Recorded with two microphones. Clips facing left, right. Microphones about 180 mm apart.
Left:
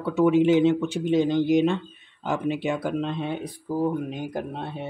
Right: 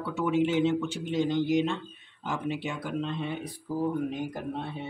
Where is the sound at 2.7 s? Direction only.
65° left (ahead or behind).